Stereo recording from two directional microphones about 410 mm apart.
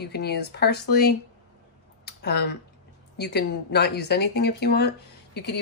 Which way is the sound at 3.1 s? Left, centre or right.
Left.